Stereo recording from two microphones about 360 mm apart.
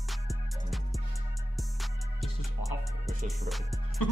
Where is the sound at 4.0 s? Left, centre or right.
Left.